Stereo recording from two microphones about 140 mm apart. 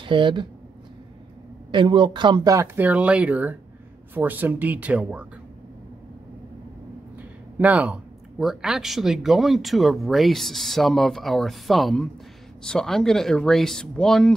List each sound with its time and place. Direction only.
0.0 s speech: 35° right (ahead or behind)
1.7 s speech: 35° right (ahead or behind); by 5.2 s 10° right (ahead or behind)
7.2 s a sound: 10° right (ahead or behind)
8.4 s speech: centre (ahead or behind)